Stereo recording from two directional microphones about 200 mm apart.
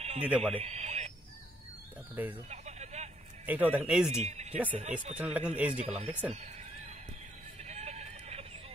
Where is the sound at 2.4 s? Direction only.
35° right (ahead or behind).